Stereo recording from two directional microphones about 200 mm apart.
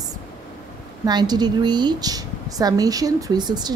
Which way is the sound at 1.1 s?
20° right (ahead or behind).